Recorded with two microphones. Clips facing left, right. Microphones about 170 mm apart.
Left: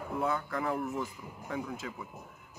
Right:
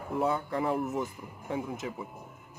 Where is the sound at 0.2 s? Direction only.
25° right (ahead or behind).